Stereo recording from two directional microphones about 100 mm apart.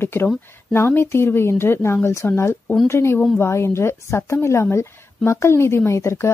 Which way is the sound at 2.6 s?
5° left (ahead or behind).